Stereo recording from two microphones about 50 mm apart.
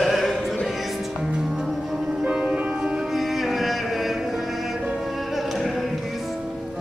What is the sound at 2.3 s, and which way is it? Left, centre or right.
Music, right.